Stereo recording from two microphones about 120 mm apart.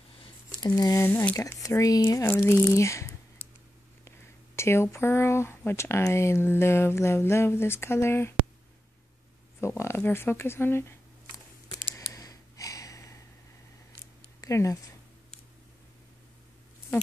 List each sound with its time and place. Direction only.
0.6 s speech: 30° left (ahead or behind)
1.0 s speech: 15° left (ahead or behind)
9.6 s shuffling cards: 25° left (ahead or behind)
14.4 s speech: 25° left (ahead or behind)